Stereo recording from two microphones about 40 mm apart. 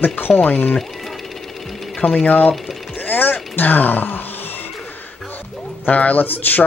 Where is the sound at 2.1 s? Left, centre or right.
Left.